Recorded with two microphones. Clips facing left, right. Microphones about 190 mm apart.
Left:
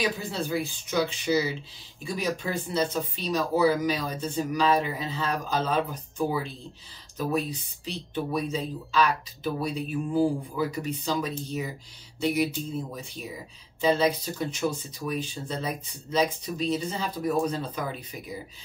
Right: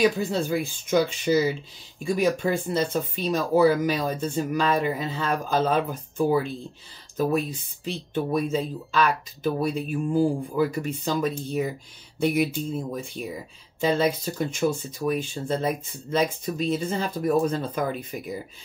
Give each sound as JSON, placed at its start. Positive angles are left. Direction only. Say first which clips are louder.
{"t": 0.0, "sound": "speech", "louder": "right 7 dB", "side_deg": -45}